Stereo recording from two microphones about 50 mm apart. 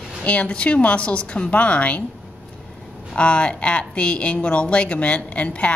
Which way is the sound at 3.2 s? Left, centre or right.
Left.